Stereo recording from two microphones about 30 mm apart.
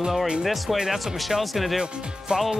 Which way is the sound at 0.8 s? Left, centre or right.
Centre.